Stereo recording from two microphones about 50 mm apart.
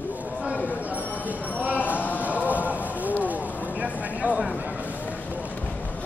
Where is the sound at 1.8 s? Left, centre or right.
Left.